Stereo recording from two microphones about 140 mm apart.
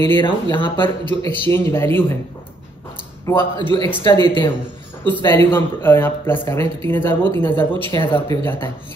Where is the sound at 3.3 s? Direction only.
20° left (ahead or behind).